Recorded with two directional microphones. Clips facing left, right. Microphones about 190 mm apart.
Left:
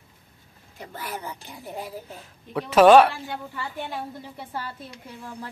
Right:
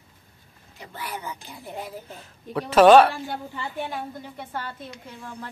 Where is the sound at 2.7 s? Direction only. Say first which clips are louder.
Even; 5° left (ahead or behind).